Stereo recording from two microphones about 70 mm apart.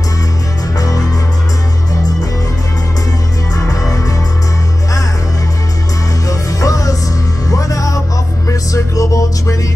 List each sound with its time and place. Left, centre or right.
0.7 s music: left
3.5 s music: left
6.2 s music: left